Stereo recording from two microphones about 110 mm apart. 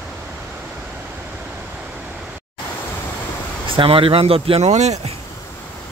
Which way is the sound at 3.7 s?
55° right (ahead or behind).